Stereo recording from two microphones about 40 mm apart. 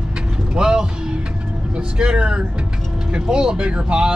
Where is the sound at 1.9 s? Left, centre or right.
Right.